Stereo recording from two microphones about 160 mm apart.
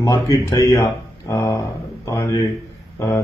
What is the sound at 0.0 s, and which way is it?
A man's voice, 20° left (ahead or behind).